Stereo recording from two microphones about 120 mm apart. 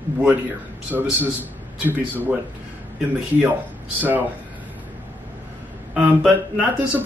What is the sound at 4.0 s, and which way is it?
Speech, 15° right (ahead or behind).